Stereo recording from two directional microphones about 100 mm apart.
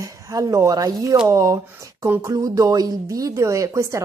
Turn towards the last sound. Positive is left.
turn(degrees=-30)  # may be behind; listen again after turning